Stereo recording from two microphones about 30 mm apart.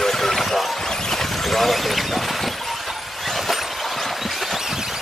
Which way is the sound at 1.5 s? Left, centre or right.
Centre.